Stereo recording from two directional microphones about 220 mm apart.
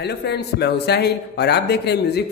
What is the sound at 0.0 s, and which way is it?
Speech, 50° left (ahead or behind).